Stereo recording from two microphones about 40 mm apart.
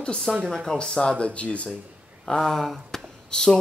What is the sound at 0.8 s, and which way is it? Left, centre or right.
Speech, left.